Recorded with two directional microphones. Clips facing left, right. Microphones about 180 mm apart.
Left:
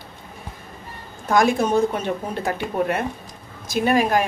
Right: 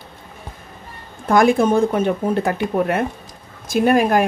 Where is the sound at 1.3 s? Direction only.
55° right (ahead or behind).